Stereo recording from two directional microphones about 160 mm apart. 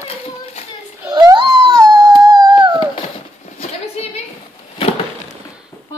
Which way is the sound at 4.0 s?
40° left (ahead or behind).